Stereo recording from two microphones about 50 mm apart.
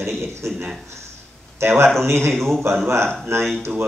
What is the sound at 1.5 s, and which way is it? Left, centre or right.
Speech, right.